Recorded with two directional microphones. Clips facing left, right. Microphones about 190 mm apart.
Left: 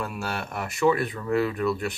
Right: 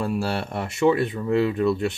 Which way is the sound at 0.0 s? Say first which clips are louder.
Right 6 dB; 30° right (ahead or behind).